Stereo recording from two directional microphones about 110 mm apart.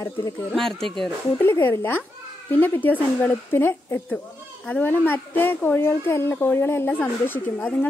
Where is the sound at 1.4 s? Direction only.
20° left (ahead or behind).